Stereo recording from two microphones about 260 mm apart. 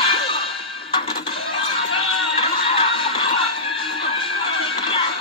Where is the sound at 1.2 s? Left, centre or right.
Centre.